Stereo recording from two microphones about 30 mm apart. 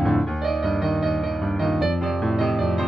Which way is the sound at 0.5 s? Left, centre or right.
Centre.